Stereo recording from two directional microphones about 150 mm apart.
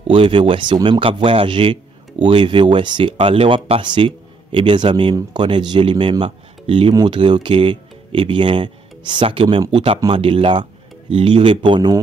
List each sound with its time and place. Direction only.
0.1 s speech: 35° right (ahead or behind)